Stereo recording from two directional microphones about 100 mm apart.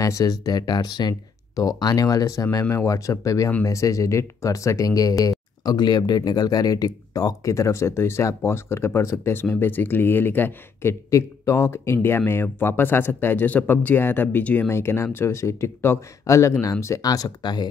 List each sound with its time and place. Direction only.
0.0 s speech: 35° left (ahead or behind)